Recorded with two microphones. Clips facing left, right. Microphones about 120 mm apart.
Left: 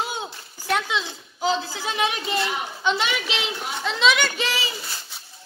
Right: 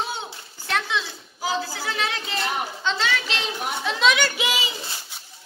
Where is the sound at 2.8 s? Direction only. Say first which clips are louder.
Left 4 dB; 15° left (ahead or behind).